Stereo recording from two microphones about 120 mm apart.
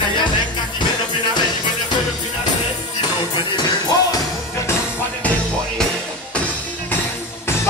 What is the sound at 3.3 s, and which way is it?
Music, 35° left (ahead or behind).